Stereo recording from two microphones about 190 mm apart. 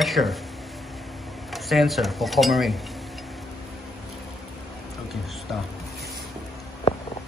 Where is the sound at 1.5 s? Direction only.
Centre (ahead or behind).